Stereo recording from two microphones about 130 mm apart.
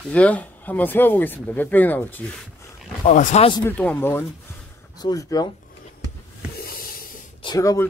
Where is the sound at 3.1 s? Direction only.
60° left (ahead or behind).